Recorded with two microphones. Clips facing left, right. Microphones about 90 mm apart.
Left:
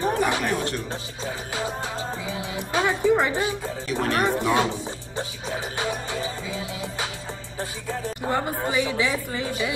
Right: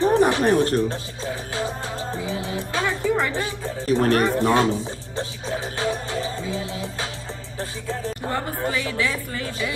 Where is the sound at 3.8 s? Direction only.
40° right (ahead or behind).